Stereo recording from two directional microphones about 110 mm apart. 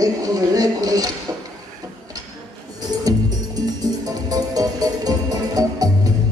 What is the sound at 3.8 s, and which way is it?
Music, 35° right (ahead or behind).